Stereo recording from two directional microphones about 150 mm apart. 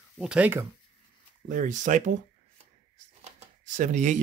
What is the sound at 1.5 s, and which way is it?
Speech, 60° right (ahead or behind).